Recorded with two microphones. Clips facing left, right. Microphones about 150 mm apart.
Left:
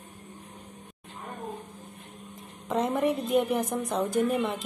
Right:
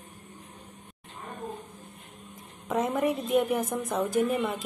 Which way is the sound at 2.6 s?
Centre (ahead or behind).